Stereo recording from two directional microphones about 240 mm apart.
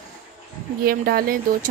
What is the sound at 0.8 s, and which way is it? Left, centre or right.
Speech, right.